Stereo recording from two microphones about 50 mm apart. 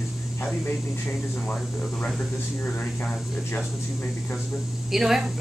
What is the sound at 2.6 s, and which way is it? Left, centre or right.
Speech, left.